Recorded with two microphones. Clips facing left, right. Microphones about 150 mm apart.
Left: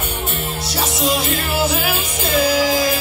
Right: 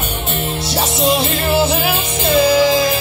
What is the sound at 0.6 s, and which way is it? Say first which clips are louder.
Music: right 4 dB; 25° right (ahead or behind).